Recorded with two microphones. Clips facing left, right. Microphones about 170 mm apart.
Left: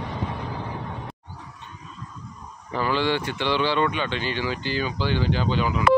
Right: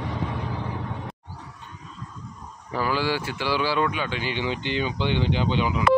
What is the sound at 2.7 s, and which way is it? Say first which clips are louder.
Speech: left 1 dB; 10° right (ahead or behind).